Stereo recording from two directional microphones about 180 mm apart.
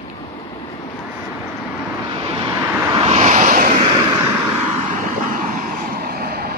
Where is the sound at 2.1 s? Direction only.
25° right (ahead or behind).